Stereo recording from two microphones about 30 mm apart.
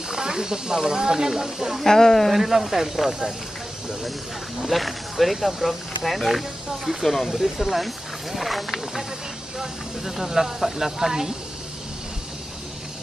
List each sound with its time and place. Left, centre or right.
0.1 s speech: right
1.9 s speech: centre
2.3 s speech: centre
4.6 s speech: centre